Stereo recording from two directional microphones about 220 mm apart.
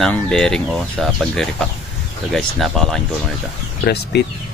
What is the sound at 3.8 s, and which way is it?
Speech, 50° left (ahead or behind).